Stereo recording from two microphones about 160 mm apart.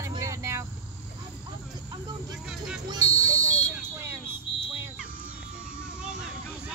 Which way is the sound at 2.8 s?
20° right (ahead or behind).